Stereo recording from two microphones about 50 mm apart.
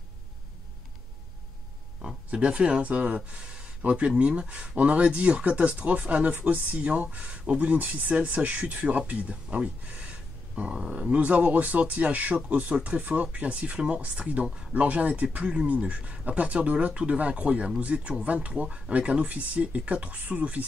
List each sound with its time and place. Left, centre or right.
2.3 s speech: right
10.5 s speech: centre